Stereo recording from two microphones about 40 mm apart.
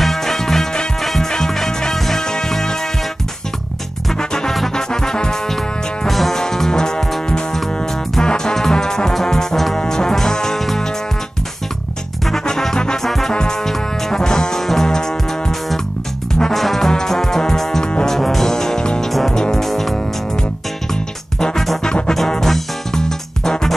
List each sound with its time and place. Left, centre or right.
0.0 s music: centre
4.2 s music: centre
6.0 s music: centre
12.4 s music: centre
13.3 s brass instrument: centre
14.6 s music: centre
16.5 s music: centre
21.4 s music: centre